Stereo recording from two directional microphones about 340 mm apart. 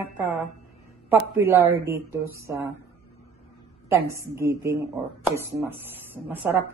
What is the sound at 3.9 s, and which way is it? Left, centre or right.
A woman's voice, centre.